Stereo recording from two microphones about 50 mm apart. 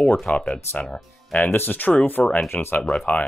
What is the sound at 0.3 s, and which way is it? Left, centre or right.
Speech, left.